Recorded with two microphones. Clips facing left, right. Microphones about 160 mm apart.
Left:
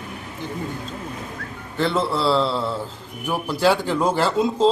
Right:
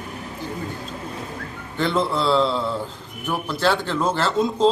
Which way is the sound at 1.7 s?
5° left (ahead or behind).